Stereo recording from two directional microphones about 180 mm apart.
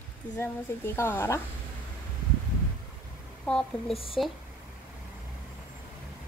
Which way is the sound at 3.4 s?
5° left (ahead or behind).